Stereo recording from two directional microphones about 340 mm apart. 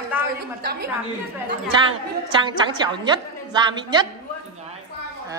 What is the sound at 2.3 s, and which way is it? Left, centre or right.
A woman's voice, centre.